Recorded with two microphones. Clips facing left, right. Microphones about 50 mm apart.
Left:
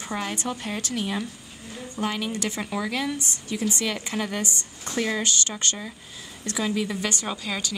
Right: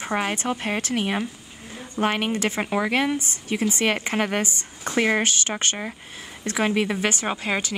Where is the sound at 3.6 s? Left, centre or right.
Right.